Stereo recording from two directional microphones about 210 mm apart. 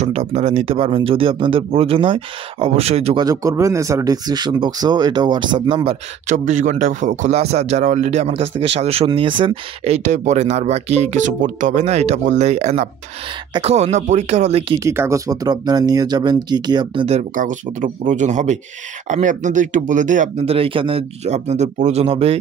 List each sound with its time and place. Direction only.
0.0 s speech: 30° right (ahead or behind)
3.3 s speech: 15° right (ahead or behind)
6.2 s a man's voice: 35° right (ahead or behind)
14.8 s speech: 15° right (ahead or behind)
17.4 s a man's voice: 35° right (ahead or behind)